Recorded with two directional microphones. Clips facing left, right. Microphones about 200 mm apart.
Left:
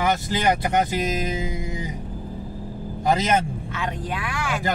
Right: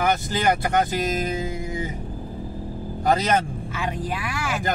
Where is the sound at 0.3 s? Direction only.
20° left (ahead or behind).